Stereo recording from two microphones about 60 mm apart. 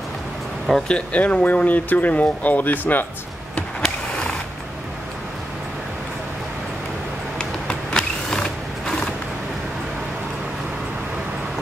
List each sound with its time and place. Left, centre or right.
0.8 s speech: left
3.8 s a sound: centre
7.3 s mechanisms: centre